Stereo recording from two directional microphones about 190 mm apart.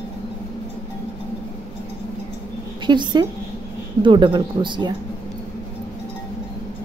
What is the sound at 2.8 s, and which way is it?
Speech, 25° right (ahead or behind).